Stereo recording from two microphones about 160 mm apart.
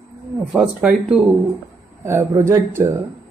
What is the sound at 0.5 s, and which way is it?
Speech, 5° right (ahead or behind).